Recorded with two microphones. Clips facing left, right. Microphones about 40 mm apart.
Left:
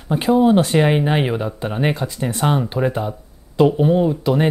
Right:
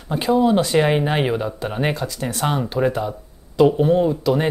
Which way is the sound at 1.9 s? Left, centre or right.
Centre.